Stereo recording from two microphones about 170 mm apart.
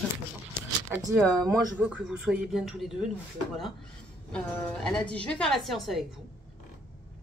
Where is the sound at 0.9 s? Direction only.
15° right (ahead or behind).